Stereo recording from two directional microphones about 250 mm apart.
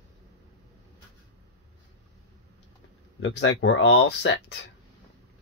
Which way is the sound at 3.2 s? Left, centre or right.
Left.